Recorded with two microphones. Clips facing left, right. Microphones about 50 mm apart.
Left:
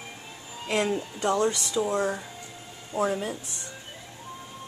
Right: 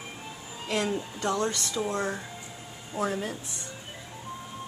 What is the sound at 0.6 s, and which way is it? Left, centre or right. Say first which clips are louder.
A woman's voice: left 3 dB; centre.